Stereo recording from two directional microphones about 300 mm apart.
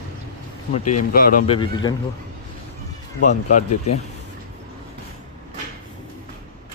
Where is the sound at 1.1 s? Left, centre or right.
Left.